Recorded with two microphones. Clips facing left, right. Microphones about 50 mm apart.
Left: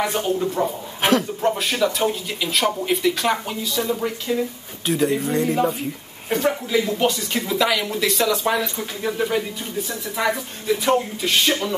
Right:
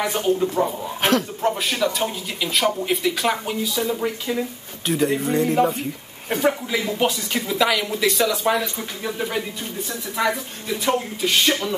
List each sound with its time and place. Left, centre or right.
0.0 s speech: centre